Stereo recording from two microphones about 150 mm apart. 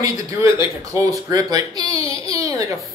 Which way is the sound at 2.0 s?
35° left (ahead or behind).